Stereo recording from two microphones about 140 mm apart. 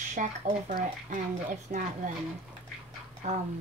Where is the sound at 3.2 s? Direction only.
60° right (ahead or behind).